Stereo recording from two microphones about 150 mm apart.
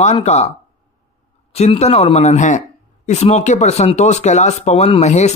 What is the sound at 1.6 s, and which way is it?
Speech, 45° left (ahead or behind).